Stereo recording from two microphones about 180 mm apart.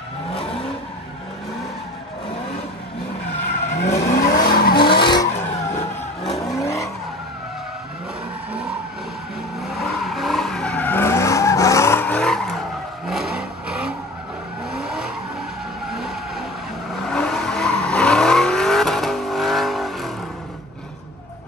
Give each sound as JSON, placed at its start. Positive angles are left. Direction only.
{"t": 0.3, "sound": "vehicle", "side_deg": 30}
{"t": 3.7, "sound": "vehicle", "side_deg": 40}
{"t": 4.0, "sound": "vehicle", "side_deg": 50}
{"t": 4.7, "sound": "vehicle", "side_deg": 25}
{"t": 6.3, "sound": "vehicle", "side_deg": 20}
{"t": 9.6, "sound": "vehicle", "side_deg": 0}